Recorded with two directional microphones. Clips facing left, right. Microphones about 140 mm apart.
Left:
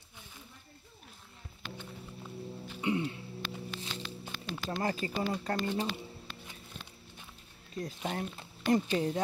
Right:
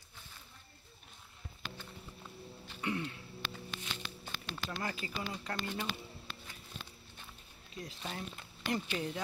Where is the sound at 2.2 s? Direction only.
5° left (ahead or behind).